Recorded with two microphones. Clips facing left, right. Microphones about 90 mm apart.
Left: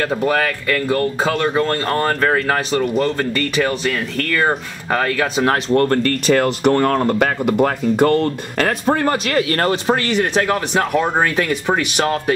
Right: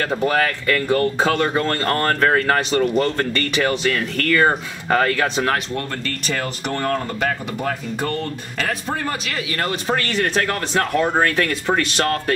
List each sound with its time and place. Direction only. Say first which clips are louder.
0.1 s speech: left 1 dB; 5° left (ahead or behind)
5.7 s speech: left 11 dB; 50° left (ahead or behind)
9.8 s speech: left 4 dB; 15° left (ahead or behind)